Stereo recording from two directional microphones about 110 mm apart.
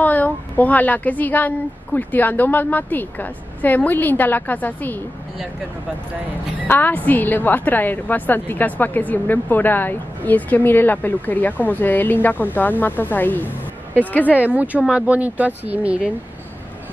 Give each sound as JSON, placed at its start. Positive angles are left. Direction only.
{"t": 0.0, "sound": "a woman's voice", "side_deg": 15}
{"t": 6.7, "sound": "a woman's voice", "side_deg": 15}
{"t": 14.3, "sound": "speech", "side_deg": -15}